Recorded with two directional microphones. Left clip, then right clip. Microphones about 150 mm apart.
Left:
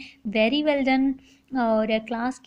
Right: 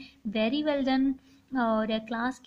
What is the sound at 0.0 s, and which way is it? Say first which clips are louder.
A woman's voice: left 7 dB; 20° left (ahead or behind).